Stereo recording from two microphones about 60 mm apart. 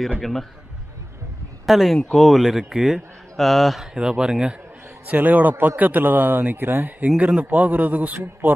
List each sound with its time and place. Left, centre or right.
0.2 s a man's voice: centre
1.7 s a man's voice: centre
2.0 s speech: centre
2.3 s a man's voice: centre
3.3 s a man's voice: centre
5.0 s a man's voice: right